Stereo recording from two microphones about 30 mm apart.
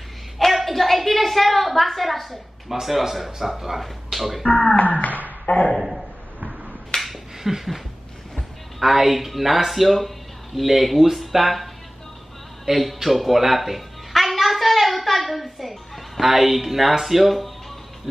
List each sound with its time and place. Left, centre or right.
0.5 s a woman's voice: centre
2.7 s speech: centre
4.5 s speech: left
5.8 s a man's voice: centre
6.9 s finger snapping: left
7.4 s speech: centre
12.6 s music: centre
15.4 s a woman's voice: centre